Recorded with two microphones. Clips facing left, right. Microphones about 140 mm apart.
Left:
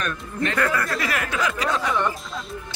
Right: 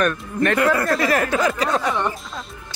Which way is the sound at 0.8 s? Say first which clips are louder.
Right 7 dB; 35° right (ahead or behind).